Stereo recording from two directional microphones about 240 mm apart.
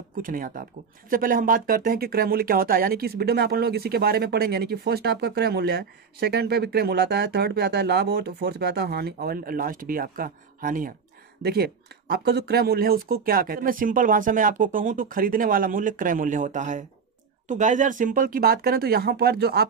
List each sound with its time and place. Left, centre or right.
0.1 s speech: right